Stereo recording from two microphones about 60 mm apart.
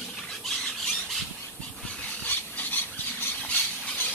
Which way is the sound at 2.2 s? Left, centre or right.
Left.